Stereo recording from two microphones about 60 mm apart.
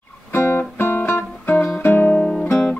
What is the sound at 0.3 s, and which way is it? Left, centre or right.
Music, left.